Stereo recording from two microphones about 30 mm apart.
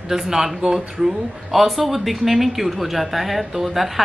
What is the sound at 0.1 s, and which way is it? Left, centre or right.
Speech, centre.